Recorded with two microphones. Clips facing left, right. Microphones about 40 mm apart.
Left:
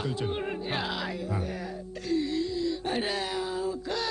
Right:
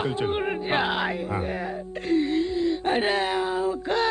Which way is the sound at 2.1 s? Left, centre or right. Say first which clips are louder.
Right 5 dB; right.